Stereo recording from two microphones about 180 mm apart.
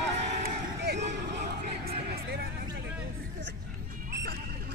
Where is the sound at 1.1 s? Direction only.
65° right (ahead or behind).